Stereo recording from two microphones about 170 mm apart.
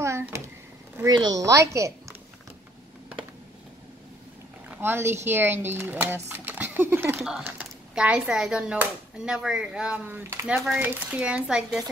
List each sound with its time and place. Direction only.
0.0 s a sound: 15° right (ahead or behind)
0.9 s a woman's voice: 20° right (ahead or behind)
4.6 s speech: 15° right (ahead or behind)